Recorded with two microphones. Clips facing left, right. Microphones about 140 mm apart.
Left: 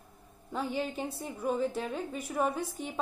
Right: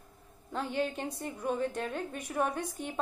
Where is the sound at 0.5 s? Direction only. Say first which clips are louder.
Even; 10° left (ahead or behind).